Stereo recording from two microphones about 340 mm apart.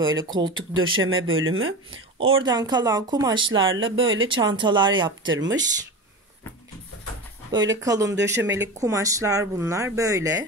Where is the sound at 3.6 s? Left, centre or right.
Right.